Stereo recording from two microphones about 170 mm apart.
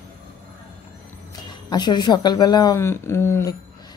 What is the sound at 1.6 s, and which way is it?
Speech, 25° left (ahead or behind).